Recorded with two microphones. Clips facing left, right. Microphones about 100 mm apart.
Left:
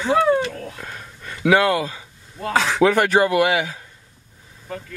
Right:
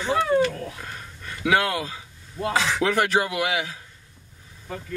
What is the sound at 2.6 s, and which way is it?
Speech, 60° left (ahead or behind).